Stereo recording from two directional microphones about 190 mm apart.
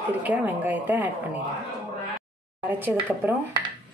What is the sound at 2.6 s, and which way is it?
Speech, 10° right (ahead or behind).